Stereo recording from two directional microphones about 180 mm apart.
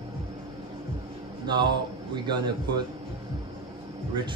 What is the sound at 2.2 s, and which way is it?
Speech, 25° right (ahead or behind).